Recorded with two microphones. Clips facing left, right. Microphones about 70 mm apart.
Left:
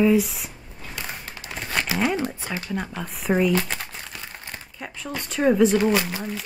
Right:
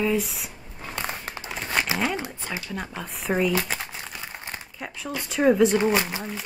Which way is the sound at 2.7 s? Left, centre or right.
Centre.